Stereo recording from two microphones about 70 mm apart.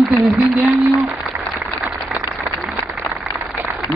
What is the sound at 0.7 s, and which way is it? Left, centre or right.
Speech, right.